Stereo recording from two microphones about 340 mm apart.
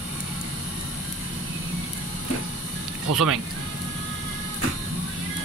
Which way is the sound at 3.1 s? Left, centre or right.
Right.